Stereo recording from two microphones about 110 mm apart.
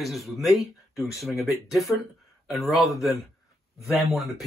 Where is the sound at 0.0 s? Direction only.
Centre (ahead or behind).